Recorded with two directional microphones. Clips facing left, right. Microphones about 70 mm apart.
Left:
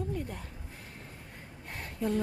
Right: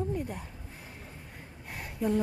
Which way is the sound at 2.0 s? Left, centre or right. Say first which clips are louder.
Right 2 dB; centre.